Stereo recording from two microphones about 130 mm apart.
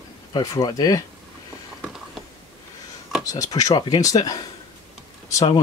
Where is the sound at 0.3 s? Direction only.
30° left (ahead or behind).